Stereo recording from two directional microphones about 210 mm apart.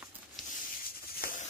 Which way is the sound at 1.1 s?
40° left (ahead or behind).